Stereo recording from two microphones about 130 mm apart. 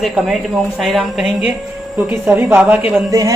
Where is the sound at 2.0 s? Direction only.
15° right (ahead or behind).